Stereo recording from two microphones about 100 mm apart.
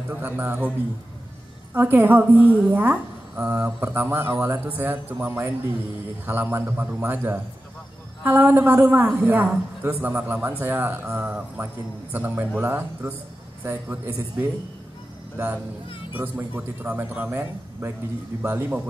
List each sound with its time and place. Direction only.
0.2 s a man's voice: 20° right (ahead or behind)